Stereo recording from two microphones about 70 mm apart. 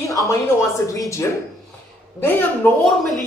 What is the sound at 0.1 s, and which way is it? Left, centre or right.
A woman's voice, left.